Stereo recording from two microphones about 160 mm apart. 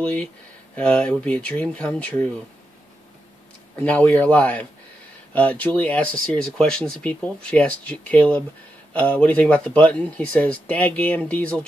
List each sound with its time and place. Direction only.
0.0 s speech: 10° left (ahead or behind)
3.8 s speech: 10° left (ahead or behind)